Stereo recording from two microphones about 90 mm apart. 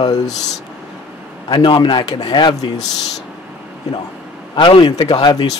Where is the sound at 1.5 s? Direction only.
60° left (ahead or behind).